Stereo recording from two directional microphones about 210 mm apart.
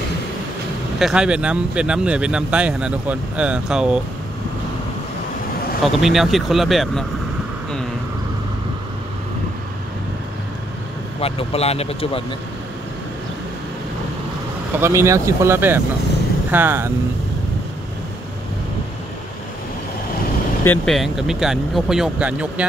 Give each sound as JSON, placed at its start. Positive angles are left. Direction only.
{"t": 0.9, "sound": "speech", "side_deg": -5}
{"t": 5.9, "sound": "speech", "side_deg": 0}
{"t": 11.1, "sound": "speech", "side_deg": 30}
{"t": 14.8, "sound": "speech", "side_deg": -15}
{"t": 20.6, "sound": "speech", "side_deg": 5}